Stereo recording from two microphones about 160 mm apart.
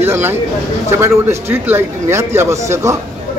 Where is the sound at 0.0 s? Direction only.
15° right (ahead or behind).